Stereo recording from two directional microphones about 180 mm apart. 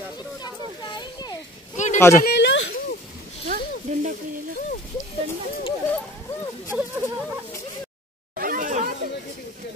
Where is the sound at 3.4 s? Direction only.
50° right (ahead or behind).